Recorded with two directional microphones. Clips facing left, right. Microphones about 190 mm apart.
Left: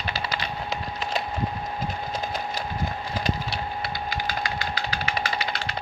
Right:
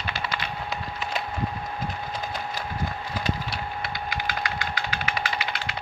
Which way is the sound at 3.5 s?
30° left (ahead or behind).